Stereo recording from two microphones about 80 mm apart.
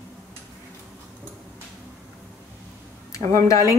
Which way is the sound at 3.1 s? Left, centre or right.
Left.